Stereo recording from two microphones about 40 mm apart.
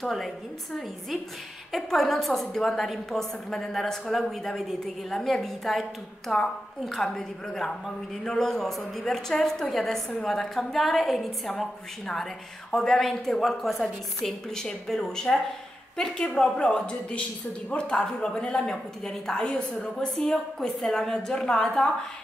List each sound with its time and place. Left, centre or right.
0.0 s a woman's voice: centre
1.8 s a woman's voice: centre
12.7 s a woman's voice: centre
14.5 s a woman's voice: centre; by 18.0 s left
18.5 s a woman's voice: centre
19.4 s a woman's voice: left
20.2 s a woman's voice: centre